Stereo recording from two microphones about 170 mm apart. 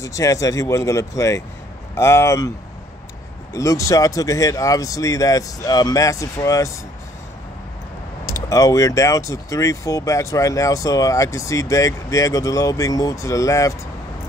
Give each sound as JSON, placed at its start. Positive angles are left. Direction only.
{"t": 0.0, "sound": "speech", "side_deg": 20}
{"t": 3.5, "sound": "speech", "side_deg": 20}
{"t": 8.5, "sound": "speech", "side_deg": 20}